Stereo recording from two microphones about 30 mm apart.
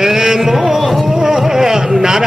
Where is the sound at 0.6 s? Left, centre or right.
Centre.